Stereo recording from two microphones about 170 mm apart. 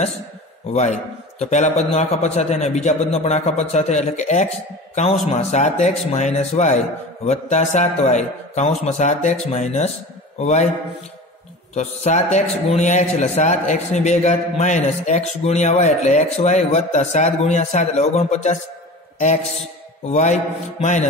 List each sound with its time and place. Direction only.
0.7 s a man's voice: 40° left (ahead or behind)
11.7 s a man's voice: 40° left (ahead or behind)
20.1 s a man's voice: 45° left (ahead or behind)